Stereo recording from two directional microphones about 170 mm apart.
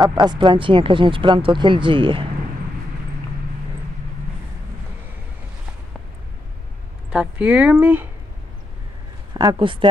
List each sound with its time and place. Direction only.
0.0 s speech: 25° right (ahead or behind)
7.1 s speech: 5° right (ahead or behind)
9.3 s speech: 25° right (ahead or behind)